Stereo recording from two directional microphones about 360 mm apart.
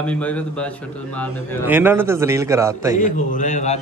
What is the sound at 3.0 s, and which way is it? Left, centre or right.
Speech, left.